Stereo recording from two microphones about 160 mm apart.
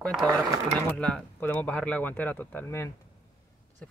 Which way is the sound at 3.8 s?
10° left (ahead or behind).